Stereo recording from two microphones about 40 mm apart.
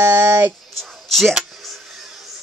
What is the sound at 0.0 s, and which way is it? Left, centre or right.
Speech, right.